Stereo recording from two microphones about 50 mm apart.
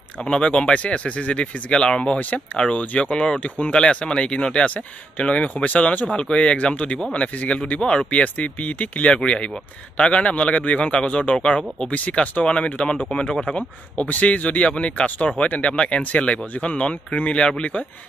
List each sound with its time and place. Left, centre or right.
0.2 s speech: centre
7.0 s speech: centre
7.8 s speech: centre
8.1 s speech: left